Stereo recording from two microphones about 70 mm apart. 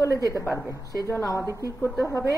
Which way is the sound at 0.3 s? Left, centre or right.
Left.